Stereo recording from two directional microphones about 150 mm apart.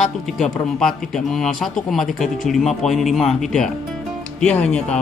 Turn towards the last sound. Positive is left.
turn(degrees=5)  # may be behind; listen again after turning